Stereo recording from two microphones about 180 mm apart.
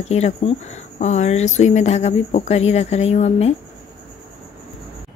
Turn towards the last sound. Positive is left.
turn(degrees=35)  # may be behind; listen again after turning